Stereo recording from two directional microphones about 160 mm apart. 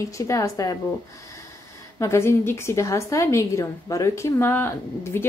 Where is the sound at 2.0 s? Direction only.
15° left (ahead or behind).